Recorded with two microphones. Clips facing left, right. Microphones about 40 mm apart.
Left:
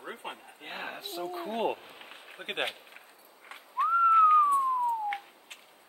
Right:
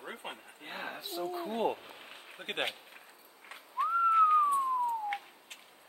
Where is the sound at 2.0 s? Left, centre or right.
Centre.